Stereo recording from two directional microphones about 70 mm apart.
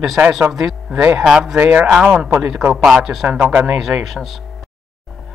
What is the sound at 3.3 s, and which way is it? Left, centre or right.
Speech, centre.